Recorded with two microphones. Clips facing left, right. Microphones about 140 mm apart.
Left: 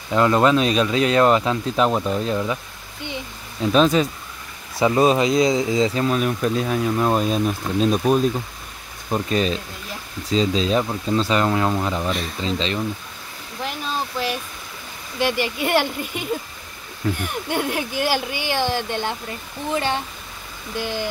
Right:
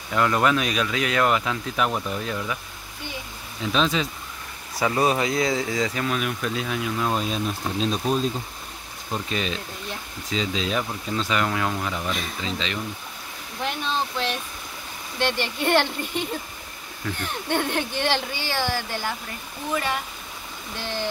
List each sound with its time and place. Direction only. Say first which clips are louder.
0.1 s speech: left 5 dB; 25° left (ahead or behind)
3.7 s speech: left 7 dB; 45° left (ahead or behind)
4.7 s speech: left 5 dB; 20° left (ahead or behind); by 8.2 s 55° left (ahead or behind)
9.1 s speech: left 7 dB; 40° left (ahead or behind)
13.6 s speech: even; 5° left (ahead or behind); by 20.0 s 30° left (ahead or behind)
20.7 s speech: left 4 dB; 15° left (ahead or behind)